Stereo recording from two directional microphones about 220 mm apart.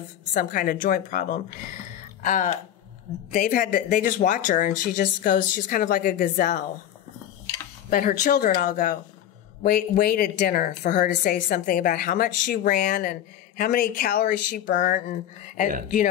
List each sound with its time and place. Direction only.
0.3 s speech: 40° left (ahead or behind)
7.9 s speech: 40° left (ahead or behind)